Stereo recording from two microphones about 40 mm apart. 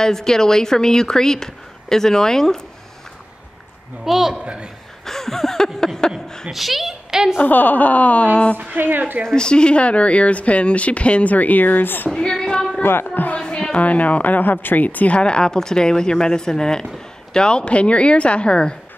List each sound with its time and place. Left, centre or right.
0.0 s speech: centre
4.0 s speech: centre
5.0 s a sound: centre
6.5 s a woman's voice: centre
7.3 s speech: left
8.5 s a woman's voice: right
9.3 s speech: left
12.1 s female singing: centre
13.0 s speech: left
13.4 s a sound: left
13.7 s speech: left
15.1 s a woman's voice: left